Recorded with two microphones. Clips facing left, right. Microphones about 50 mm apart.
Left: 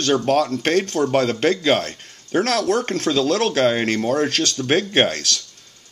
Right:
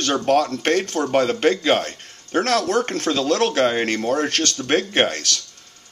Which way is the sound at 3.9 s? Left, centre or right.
Centre.